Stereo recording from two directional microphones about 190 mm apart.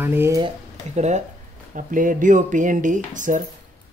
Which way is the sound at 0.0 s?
10° right (ahead or behind).